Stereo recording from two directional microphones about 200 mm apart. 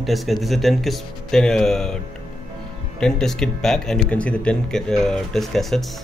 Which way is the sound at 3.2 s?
Centre (ahead or behind).